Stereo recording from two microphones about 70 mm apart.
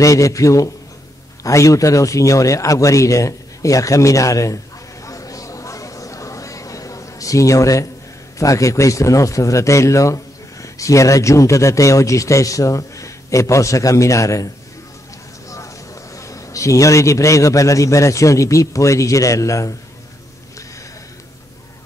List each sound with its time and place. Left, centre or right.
0.0 s a man's voice: left
5.0 s a sound: left
8.4 s a man's voice: left
15.5 s a man's voice: left